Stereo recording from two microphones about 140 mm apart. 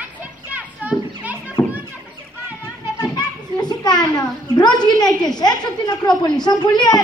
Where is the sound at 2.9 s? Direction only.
30° left (ahead or behind).